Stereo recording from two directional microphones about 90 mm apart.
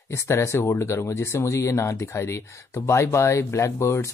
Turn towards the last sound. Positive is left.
turn(degrees=30)  # may be behind; listen again after turning